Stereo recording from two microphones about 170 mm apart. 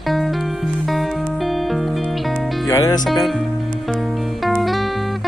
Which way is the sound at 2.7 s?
20° left (ahead or behind).